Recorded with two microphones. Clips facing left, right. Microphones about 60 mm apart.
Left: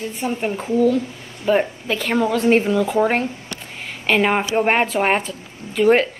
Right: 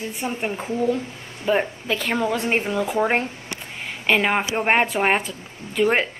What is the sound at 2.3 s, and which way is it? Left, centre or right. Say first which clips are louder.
A woman's voice: left 6 dB; centre.